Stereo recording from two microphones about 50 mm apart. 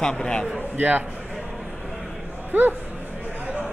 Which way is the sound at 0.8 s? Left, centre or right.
Right.